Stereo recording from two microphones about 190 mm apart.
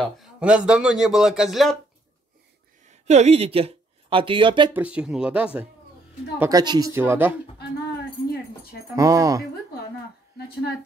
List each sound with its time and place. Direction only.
0.0 s a man's voice: 5° right (ahead or behind)
3.1 s speech: 35° right (ahead or behind)
4.7 s speech: 5° right (ahead or behind)
6.4 s speech: 20° right (ahead or behind)
8.9 s speech: 20° right (ahead or behind)